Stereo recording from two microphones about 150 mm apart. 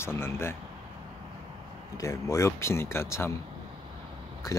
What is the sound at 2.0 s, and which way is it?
Speech, 20° left (ahead or behind).